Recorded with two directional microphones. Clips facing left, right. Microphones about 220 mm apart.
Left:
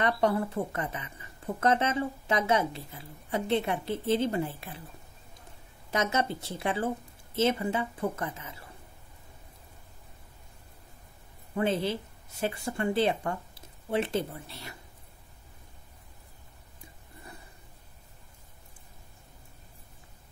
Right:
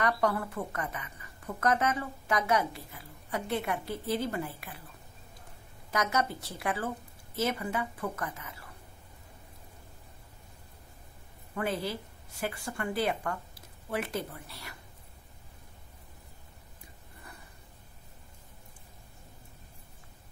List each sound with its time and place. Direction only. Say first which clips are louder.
0.0 s a woman's voice: left 3 dB; 25° left (ahead or behind)
5.9 s a woman's voice: left 2 dB; 25° left (ahead or behind)
11.5 s a woman's voice: left 5 dB; 25° left (ahead or behind)